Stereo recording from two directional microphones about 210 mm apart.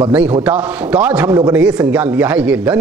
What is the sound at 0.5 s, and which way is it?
Speech, 5° right (ahead or behind).